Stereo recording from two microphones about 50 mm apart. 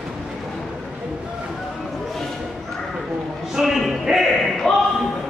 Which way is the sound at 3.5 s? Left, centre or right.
Centre.